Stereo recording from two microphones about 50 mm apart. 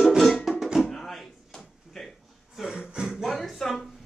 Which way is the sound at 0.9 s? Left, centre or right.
Centre.